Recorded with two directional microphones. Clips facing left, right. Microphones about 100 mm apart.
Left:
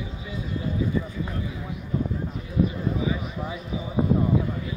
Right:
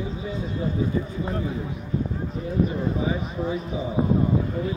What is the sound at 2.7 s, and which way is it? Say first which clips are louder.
Speech: right 2 dB; 40° right (ahead or behind).